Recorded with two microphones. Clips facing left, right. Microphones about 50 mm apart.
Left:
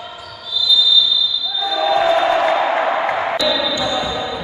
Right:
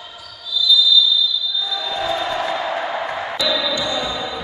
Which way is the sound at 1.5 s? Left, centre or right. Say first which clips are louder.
Left 8 dB; left.